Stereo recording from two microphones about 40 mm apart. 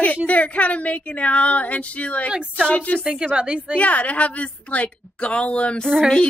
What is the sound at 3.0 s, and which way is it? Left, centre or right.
Speech, right.